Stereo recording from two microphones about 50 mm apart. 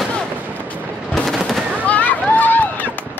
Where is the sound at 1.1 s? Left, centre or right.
Centre.